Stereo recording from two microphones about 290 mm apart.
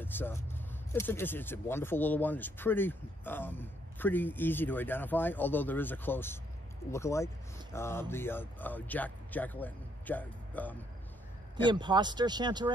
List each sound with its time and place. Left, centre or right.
0.0 s speech: centre
11.5 s speech: centre